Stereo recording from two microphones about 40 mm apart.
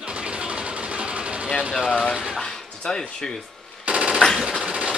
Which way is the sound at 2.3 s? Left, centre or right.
Centre.